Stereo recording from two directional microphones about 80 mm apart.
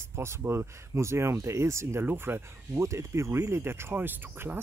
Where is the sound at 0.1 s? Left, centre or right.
Right.